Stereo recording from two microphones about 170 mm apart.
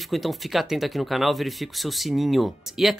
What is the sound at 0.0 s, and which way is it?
Speech, centre (ahead or behind).